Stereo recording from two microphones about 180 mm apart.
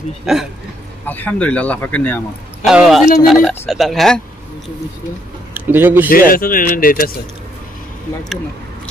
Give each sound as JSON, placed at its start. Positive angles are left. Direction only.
{"t": 0.3, "sound": "speech", "side_deg": -5}
{"t": 1.0, "sound": "speech", "side_deg": 10}
{"t": 2.6, "sound": "speech", "side_deg": -5}
{"t": 5.7, "sound": "speech", "side_deg": -10}
{"t": 6.0, "sound": "speech", "side_deg": 50}